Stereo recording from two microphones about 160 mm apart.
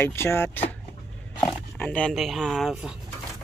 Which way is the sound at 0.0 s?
15° left (ahead or behind).